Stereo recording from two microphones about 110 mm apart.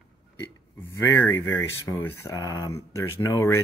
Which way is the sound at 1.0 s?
20° left (ahead or behind).